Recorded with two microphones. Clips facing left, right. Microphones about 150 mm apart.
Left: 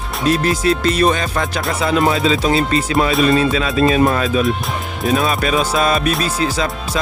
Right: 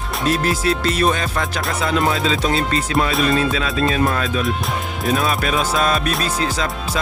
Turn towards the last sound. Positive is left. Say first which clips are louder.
# left 3 dB
turn(degrees=5)  # may be behind; listen again after turning